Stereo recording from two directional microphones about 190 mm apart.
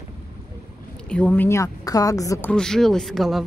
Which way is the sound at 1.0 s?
5° left (ahead or behind).